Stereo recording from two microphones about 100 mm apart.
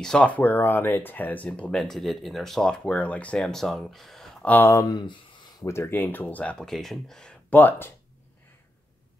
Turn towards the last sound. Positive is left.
turn(degrees=20)  # may be behind; listen again after turning